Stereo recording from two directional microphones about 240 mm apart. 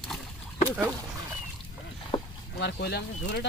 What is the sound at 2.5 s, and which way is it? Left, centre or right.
Speech, left.